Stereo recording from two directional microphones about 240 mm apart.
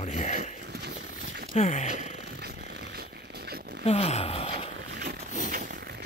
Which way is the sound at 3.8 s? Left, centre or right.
Left.